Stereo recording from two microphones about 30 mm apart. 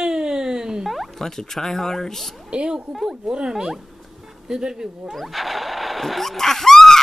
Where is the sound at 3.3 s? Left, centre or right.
Right.